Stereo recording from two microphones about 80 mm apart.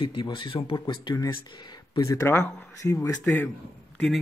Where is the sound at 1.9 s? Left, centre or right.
Left.